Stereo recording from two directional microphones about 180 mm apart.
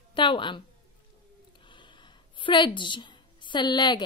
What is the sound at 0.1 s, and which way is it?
Speech, 25° left (ahead or behind).